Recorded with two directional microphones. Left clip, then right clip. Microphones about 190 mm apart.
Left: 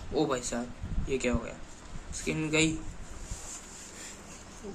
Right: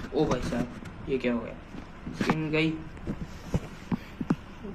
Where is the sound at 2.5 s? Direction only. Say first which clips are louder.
Left 3 dB; 10° left (ahead or behind).